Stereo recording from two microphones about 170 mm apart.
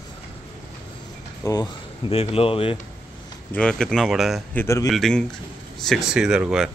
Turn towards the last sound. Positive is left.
turn(degrees=-5)  # may be behind; listen again after turning